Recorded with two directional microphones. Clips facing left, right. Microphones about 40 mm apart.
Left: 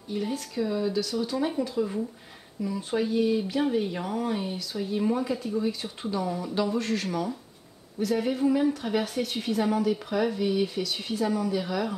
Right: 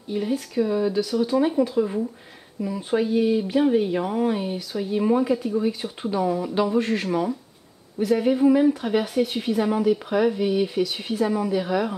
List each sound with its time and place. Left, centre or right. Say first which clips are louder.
0.1 s a woman's voice: right 5 dB; centre